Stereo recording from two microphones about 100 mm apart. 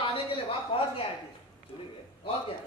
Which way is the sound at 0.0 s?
65° left (ahead or behind).